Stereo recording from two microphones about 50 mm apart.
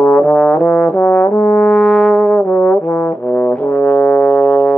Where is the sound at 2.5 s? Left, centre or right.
Left.